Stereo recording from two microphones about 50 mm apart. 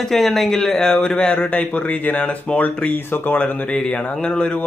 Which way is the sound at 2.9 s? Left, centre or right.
Left.